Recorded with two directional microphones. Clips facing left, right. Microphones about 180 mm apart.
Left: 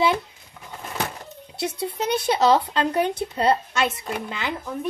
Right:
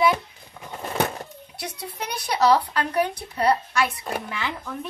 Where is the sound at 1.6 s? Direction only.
25° left (ahead or behind).